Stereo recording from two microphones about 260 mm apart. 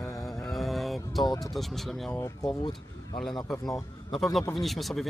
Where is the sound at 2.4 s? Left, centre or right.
Centre.